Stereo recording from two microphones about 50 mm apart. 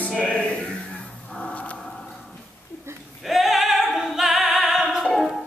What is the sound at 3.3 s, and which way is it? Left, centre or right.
Opera, centre.